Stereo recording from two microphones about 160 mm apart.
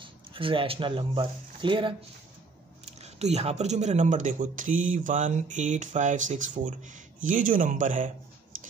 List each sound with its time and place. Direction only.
0.0 s speech: 35° right (ahead or behind)
3.0 s speech: 45° right (ahead or behind)